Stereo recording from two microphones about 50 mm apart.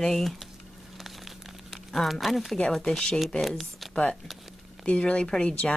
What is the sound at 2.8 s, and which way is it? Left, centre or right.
Speech, centre.